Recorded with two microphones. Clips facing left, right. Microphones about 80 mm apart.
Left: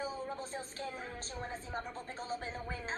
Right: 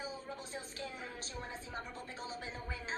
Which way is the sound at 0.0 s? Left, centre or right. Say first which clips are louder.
Left 5 dB; left.